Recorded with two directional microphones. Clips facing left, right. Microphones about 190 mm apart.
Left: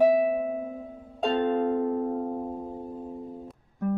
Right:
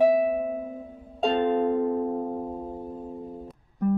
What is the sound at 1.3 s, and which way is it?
Harp, 20° right (ahead or behind).